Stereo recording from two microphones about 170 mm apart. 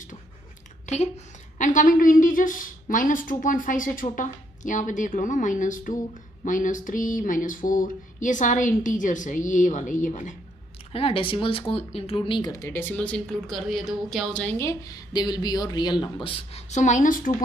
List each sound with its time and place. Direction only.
0.8 s a woman's voice: 40° left (ahead or behind)
10.9 s speech: 35° left (ahead or behind); by 17.3 s 50° left (ahead or behind)